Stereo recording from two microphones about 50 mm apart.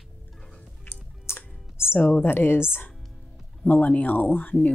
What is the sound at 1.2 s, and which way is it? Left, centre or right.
Music, left.